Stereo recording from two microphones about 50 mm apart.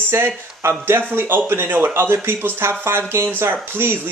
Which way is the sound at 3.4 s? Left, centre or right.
Right.